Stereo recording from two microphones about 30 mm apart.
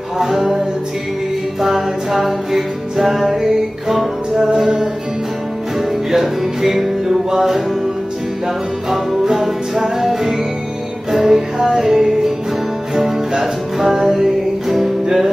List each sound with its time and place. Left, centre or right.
0.2 s music: centre
1.6 s music: centre
5.8 s music: centre
8.9 s music: centre